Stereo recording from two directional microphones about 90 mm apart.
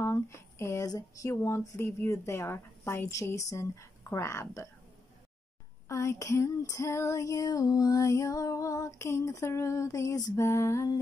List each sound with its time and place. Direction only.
0.0 s a sound: 30° left (ahead or behind)
0.8 s female singing: 40° left (ahead or behind)
5.9 s female singing: 35° left (ahead or behind)